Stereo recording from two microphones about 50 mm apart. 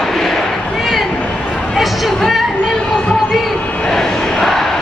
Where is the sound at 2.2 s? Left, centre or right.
Centre.